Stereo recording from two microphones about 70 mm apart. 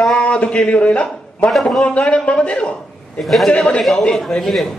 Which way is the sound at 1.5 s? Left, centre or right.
Centre.